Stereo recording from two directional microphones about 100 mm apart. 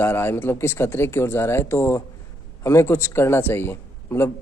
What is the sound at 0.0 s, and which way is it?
A man's voice, 25° left (ahead or behind).